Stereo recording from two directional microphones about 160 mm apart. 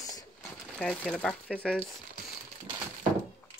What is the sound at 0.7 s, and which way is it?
Speech, 5° left (ahead or behind).